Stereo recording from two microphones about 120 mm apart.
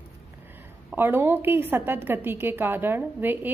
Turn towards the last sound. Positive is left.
turn(degrees=-15)  # may be behind; listen again after turning